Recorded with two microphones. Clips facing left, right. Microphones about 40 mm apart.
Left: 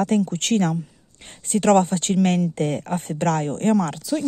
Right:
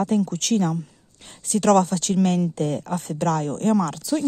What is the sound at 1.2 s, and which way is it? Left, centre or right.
Speech, left.